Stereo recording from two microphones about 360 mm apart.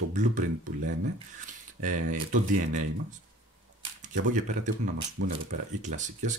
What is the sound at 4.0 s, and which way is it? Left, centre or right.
Speech, right.